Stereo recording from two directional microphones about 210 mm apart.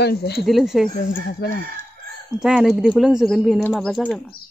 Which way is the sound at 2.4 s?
Centre (ahead or behind).